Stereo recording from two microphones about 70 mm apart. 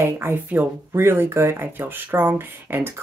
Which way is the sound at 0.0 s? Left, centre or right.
Right.